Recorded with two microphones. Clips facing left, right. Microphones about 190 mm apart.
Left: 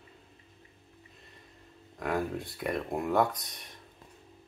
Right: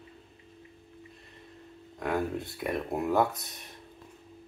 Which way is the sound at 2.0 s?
Centre (ahead or behind).